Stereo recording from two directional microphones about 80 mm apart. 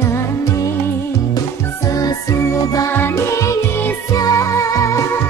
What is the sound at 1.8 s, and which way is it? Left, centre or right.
Music, left.